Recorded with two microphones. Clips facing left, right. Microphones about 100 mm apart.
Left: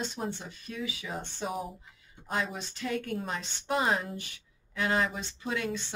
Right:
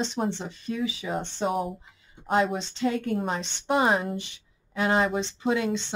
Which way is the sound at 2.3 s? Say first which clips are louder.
Right 9 dB; 25° right (ahead or behind).